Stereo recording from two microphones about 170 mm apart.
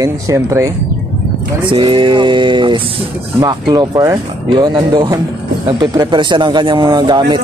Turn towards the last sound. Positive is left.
turn(degrees=-25)  # may be behind; listen again after turning